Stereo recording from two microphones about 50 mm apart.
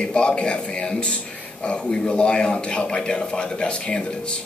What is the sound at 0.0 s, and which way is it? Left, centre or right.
A man's voice, centre.